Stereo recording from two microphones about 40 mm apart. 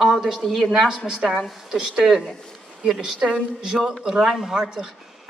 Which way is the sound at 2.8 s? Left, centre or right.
Centre.